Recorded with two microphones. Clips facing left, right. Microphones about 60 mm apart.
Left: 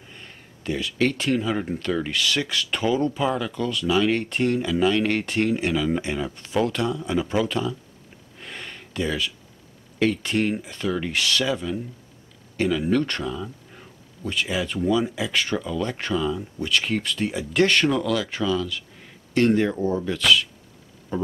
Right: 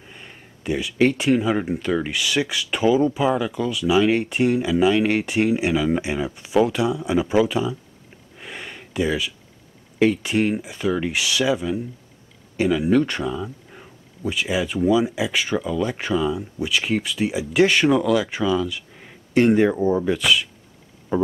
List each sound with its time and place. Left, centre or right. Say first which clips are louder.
0.1 s speech: right 2 dB; centre
8.4 s a sound: right 2 dB; centre
9.9 s speech: right 3 dB; centre